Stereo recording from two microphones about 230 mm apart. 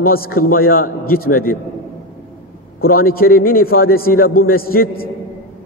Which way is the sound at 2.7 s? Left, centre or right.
Left.